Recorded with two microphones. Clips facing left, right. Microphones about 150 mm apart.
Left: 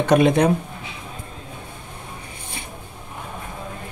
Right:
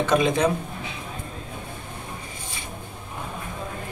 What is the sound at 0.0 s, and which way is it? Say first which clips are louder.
Speech: left 5 dB; 65° left (ahead or behind).